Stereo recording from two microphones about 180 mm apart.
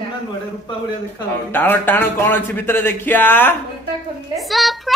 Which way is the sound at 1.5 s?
10° left (ahead or behind).